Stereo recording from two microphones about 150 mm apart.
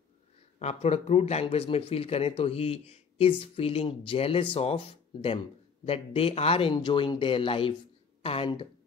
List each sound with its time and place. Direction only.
0.6 s speech: 45° left (ahead or behind)